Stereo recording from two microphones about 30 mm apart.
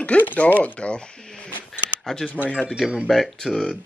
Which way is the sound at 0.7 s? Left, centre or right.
Left.